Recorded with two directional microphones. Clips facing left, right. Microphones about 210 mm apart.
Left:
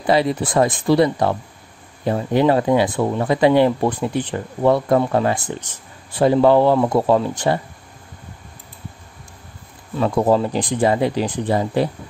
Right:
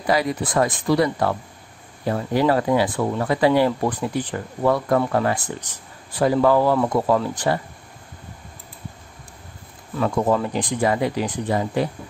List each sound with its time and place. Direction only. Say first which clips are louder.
0.0 s speech: left 4 dB; 25° left (ahead or behind)
9.9 s speech: left 3 dB; 30° left (ahead or behind)